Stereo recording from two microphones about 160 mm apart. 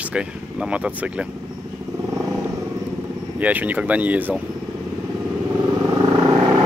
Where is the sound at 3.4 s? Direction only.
10° right (ahead or behind).